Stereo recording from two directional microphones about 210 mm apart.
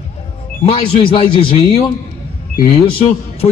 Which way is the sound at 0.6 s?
25° left (ahead or behind).